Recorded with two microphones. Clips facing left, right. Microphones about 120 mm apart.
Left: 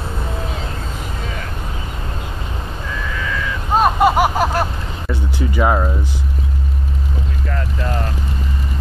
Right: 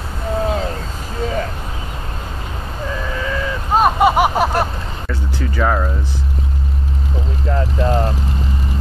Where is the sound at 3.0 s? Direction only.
30° right (ahead or behind).